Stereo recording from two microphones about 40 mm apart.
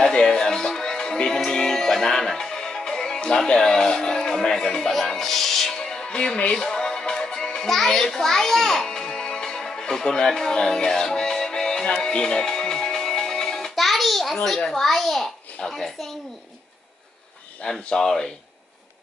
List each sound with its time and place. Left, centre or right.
0.0 s music: left
3.4 s speech: centre
5.8 s music: left
7.7 s a child's voice: centre
10.8 s music: centre
13.7 s a sound: centre
14.7 s a child's voice: centre
17.8 s speech: centre